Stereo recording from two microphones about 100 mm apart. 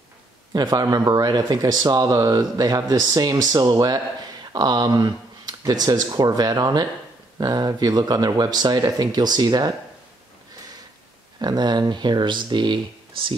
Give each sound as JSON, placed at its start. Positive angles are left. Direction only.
{"t": 0.5, "sound": "speech", "side_deg": -40}
{"t": 11.3, "sound": "speech", "side_deg": -45}